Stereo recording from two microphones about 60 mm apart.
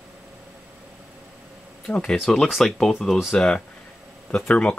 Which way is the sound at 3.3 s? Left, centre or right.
Centre.